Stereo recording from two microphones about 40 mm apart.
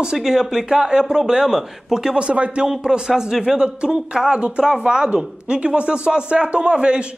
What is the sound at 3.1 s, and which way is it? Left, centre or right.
A woman's voice, centre.